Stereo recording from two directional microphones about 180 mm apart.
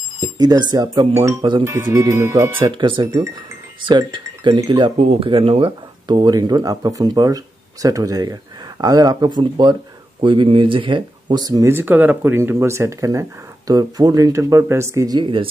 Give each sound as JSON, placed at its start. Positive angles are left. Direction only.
{"t": 0.2, "sound": "speech", "side_deg": -20}
{"t": 2.7, "sound": "speech", "side_deg": -25}